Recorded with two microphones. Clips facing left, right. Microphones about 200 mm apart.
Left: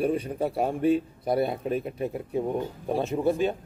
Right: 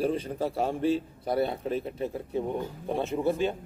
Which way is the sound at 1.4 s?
15° left (ahead or behind).